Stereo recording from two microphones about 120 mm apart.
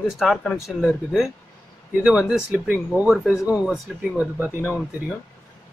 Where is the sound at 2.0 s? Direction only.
10° right (ahead or behind).